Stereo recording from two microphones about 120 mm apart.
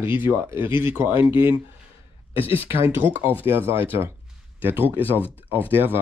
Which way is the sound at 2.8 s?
15° right (ahead or behind).